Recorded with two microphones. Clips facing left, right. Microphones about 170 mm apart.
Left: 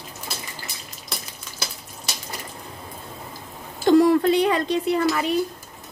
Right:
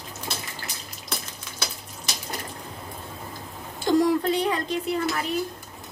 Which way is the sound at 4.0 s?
70° left (ahead or behind).